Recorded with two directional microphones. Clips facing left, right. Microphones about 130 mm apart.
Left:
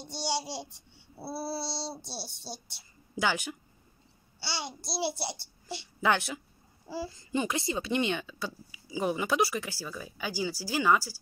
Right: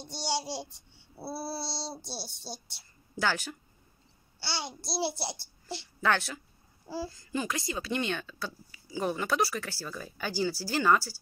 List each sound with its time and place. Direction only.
0.0 s child singing: centre (ahead or behind)
3.2 s speech: 15° left (ahead or behind)
4.4 s child singing: centre (ahead or behind)
5.7 s speech: 10° left (ahead or behind)